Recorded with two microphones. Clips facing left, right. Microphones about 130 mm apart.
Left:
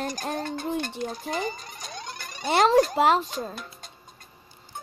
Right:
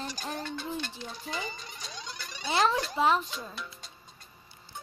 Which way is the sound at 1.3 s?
45° left (ahead or behind).